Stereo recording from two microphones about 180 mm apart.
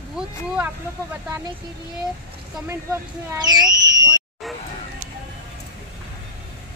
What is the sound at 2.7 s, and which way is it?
Speech, 15° right (ahead or behind).